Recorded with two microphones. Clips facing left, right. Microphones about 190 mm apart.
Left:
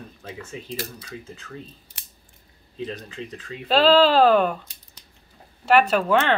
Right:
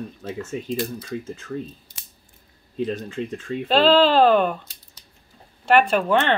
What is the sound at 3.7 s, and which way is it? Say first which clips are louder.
Speech: even; 5° left (ahead or behind).